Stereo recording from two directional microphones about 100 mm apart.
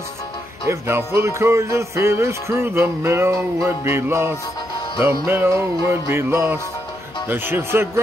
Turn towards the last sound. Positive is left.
turn(degrees=-25)  # may be behind; listen again after turning